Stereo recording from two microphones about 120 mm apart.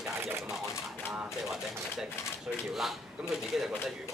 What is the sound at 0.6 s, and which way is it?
Speech, 20° left (ahead or behind).